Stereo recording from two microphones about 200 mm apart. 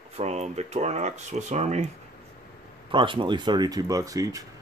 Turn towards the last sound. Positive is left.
turn(degrees=-15)  # may be behind; listen again after turning